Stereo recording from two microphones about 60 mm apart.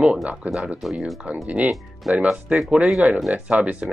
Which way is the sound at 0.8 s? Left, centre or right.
Centre.